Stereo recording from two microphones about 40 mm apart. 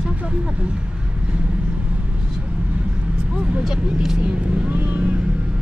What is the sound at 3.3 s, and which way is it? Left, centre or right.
Vehicle, right.